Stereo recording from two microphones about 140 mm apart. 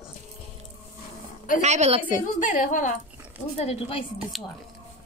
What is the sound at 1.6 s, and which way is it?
Speech, 50° right (ahead or behind).